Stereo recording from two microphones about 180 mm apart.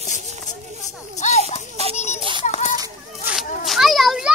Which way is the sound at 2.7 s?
20° right (ahead or behind).